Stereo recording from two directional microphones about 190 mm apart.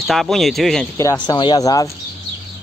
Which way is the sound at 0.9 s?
15° left (ahead or behind).